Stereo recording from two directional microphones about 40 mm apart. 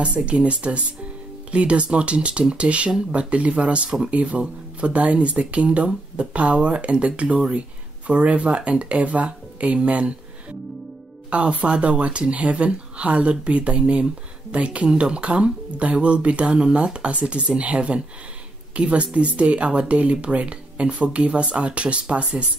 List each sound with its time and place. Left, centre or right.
0.0 s speech: right
11.2 s speech: right